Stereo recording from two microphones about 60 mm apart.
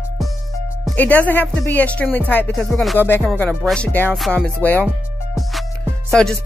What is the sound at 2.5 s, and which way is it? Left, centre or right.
Music, centre.